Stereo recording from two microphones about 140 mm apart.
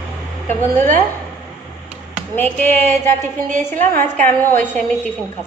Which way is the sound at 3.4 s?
60° right (ahead or behind).